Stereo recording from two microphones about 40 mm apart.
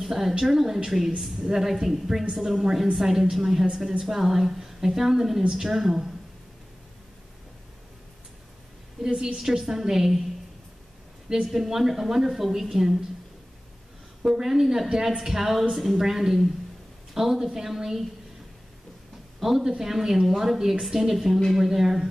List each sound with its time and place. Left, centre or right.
0.0 s a woman's voice: centre
9.0 s a woman's voice: centre
11.5 s a woman's voice: centre
14.2 s a woman's voice: centre
19.4 s a woman's voice: centre